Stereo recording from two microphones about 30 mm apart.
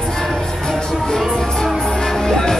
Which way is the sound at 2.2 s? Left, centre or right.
Centre.